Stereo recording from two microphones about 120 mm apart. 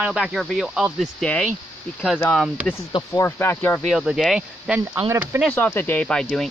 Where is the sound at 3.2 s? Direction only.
20° left (ahead or behind).